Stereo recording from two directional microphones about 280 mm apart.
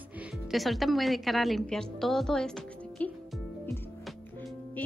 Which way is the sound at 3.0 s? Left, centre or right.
Centre.